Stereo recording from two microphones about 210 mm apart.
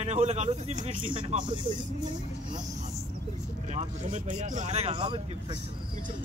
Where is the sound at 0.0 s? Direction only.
30° right (ahead or behind).